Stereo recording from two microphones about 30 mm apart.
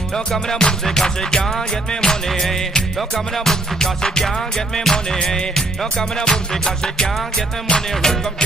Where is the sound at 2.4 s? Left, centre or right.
Centre.